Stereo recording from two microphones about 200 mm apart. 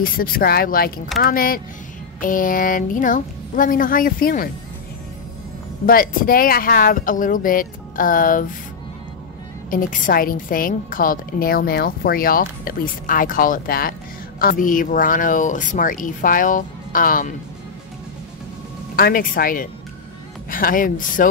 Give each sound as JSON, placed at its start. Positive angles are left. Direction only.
{"t": 0.0, "sound": "a woman's voice", "side_deg": 45}
{"t": 5.9, "sound": "a woman's voice", "side_deg": 45}
{"t": 9.7, "sound": "a woman's voice", "side_deg": 40}
{"t": 18.9, "sound": "a woman's voice", "side_deg": 45}